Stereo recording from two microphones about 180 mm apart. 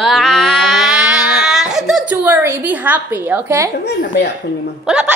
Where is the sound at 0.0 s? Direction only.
Centre (ahead or behind); by 3.7 s 15° right (ahead or behind).